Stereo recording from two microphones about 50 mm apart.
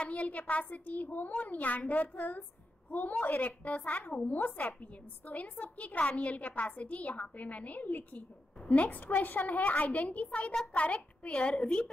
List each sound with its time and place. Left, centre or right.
0.0 s a woman's voice: left
10.5 s a child's voice: centre